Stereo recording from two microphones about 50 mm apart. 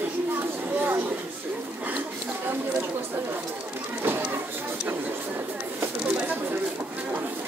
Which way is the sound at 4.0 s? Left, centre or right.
Right.